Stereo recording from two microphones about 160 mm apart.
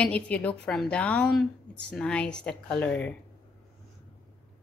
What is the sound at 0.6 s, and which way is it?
A woman's voice, 5° left (ahead or behind).